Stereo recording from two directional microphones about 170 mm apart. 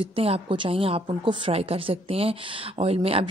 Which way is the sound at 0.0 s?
35° right (ahead or behind).